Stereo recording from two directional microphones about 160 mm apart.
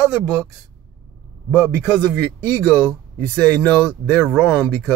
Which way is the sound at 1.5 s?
5° left (ahead or behind).